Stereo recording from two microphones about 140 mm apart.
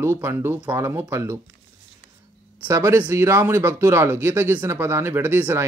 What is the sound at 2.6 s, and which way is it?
Speech, 20° right (ahead or behind).